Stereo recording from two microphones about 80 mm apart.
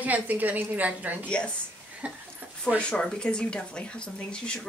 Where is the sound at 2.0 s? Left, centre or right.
Centre.